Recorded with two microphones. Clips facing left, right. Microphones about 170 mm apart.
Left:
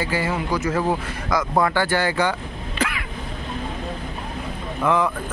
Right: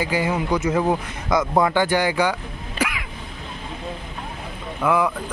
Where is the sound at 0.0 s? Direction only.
15° right (ahead or behind).